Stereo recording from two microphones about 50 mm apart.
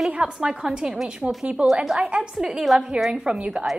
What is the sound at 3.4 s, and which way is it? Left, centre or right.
Speech, right.